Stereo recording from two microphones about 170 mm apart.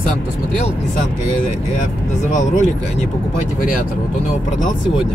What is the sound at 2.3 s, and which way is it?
Speech, 45° left (ahead or behind).